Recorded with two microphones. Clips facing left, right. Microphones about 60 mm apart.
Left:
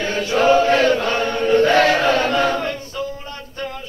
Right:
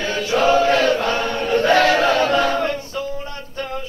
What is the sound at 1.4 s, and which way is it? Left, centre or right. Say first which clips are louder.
Choir: left 2 dB; left.